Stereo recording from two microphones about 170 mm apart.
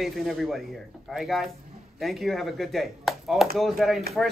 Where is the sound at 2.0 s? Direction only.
Centre (ahead or behind).